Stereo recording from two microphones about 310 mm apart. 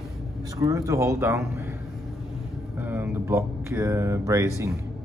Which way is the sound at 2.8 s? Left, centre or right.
Centre.